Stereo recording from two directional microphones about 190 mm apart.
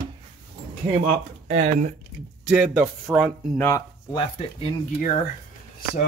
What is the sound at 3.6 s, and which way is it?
Speech, 15° left (ahead or behind).